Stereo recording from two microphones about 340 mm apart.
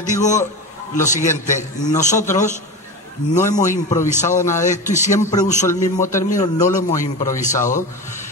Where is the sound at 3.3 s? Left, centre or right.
Left.